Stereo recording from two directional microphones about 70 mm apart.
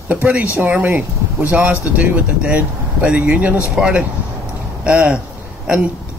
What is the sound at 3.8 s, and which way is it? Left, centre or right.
Speech, centre.